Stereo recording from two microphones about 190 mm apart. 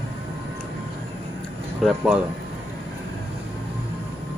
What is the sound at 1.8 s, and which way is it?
Speech, 5° right (ahead or behind).